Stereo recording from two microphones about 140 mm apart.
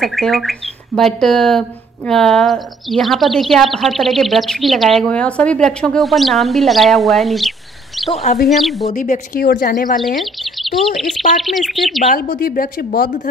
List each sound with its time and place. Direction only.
0.0 s a woman's voice: centre (ahead or behind)
8.1 s a woman's voice: 50° left (ahead or behind)
8.5 s a woman's voice: centre (ahead or behind)
8.8 s speech: 60° left (ahead or behind); by 9.9 s 75° left (ahead or behind)
9.9 s a woman's voice: centre (ahead or behind)
12.1 s speech: 90° left